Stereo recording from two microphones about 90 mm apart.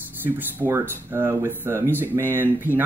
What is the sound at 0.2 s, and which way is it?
Speech, 25° right (ahead or behind).